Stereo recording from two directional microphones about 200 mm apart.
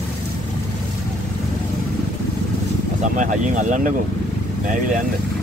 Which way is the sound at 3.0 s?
40° right (ahead or behind).